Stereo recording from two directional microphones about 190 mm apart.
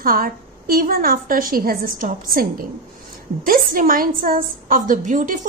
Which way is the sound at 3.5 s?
50° right (ahead or behind).